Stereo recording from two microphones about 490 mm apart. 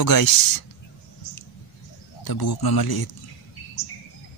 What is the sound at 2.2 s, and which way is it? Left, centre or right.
Speech, left.